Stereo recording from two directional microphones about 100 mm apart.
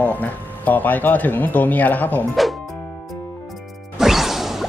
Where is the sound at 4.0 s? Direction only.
5° right (ahead or behind).